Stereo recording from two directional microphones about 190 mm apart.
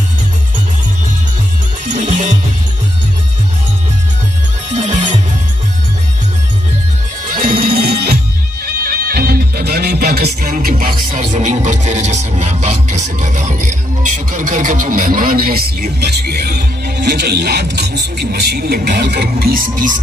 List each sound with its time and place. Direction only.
1.9 s music: 40° right (ahead or behind)
7.2 s music: 45° right (ahead or behind)
7.7 s music: 60° right (ahead or behind)
11.1 s speech: 40° right (ahead or behind)